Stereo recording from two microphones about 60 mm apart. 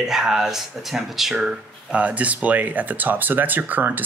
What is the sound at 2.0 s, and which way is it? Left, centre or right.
Speech, right.